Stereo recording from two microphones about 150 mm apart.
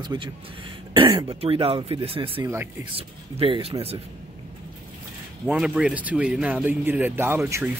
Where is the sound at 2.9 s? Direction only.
35° right (ahead or behind).